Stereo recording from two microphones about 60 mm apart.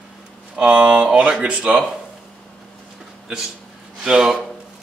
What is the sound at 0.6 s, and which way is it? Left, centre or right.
Speech, centre.